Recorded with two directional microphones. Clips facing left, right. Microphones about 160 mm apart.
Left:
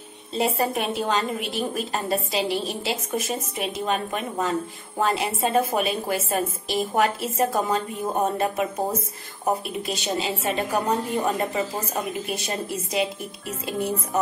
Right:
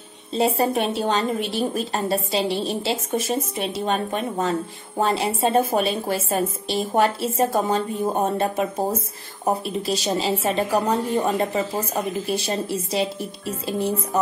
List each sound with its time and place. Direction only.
0.3 s speech: 30° right (ahead or behind)
9.8 s speech: 35° right (ahead or behind)